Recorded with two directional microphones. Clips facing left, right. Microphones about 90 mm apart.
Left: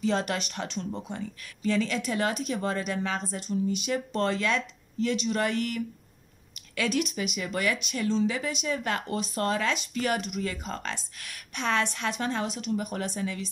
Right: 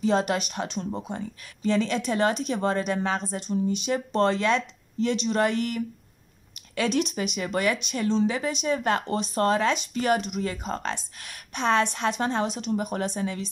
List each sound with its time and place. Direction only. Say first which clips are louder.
0.0 s speech: right 4 dB; 20° right (ahead or behind)